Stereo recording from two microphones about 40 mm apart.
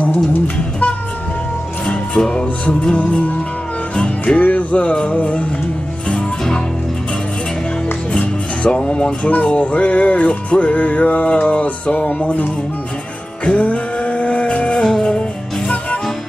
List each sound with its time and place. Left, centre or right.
0.0 s music: left
1.9 s music: left
3.9 s music: left
4.4 s music: left
8.1 s music: left
14.8 s music: centre